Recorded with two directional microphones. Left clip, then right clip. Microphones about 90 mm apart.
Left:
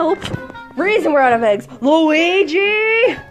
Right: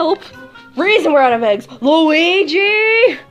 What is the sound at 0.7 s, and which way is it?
A woman's voice, 25° right (ahead or behind).